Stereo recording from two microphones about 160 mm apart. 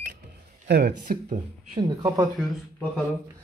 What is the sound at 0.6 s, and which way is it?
Speech, 75° right (ahead or behind).